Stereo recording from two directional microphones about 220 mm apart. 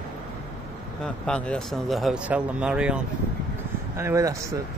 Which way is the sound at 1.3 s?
5° left (ahead or behind).